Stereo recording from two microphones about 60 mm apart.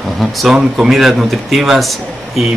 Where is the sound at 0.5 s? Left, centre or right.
Centre.